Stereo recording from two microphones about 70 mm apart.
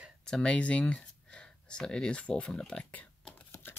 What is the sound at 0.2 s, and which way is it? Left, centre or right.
Speech, centre.